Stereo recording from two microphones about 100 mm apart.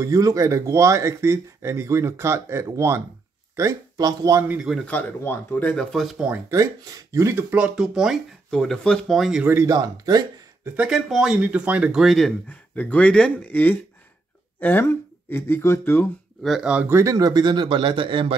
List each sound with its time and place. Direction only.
0.0 s speech: 35° right (ahead or behind)
4.8 s speech: 20° left (ahead or behind); by 6.2 s centre (ahead or behind)
6.5 s speech: 35° right (ahead or behind)
7.5 s speech: 10° right (ahead or behind)
9.4 s speech: 25° right (ahead or behind)
9.7 s speech: 40° right (ahead or behind)
10.8 s speech: 5° right (ahead or behind)
11.4 s speech: 15° right (ahead or behind)
12.4 s speech: 15° left (ahead or behind)
16.4 s speech: 5° right (ahead or behind)
16.8 s a man's voice: 30° right (ahead or behind); by 18.3 s 60° right (ahead or behind)